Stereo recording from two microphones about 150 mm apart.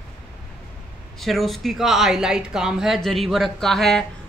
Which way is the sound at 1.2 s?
Centre (ahead or behind).